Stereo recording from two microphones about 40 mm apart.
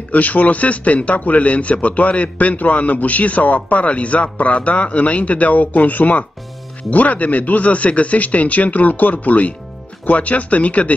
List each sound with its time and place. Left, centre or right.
0.1 s a man's voice: left